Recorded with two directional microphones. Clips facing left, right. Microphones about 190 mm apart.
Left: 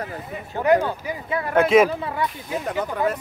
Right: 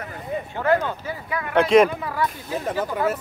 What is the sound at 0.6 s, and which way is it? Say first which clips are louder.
Speech: left 3 dB; 15° left (ahead or behind).